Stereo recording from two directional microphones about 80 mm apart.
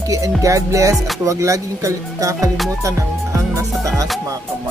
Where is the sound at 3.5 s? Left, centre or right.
Right.